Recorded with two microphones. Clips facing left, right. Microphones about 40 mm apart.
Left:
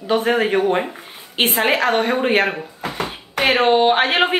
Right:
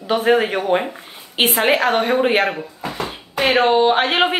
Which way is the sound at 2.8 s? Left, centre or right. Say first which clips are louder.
Left 1 dB; left.